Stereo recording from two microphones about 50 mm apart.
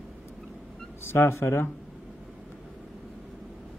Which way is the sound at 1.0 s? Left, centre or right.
Left.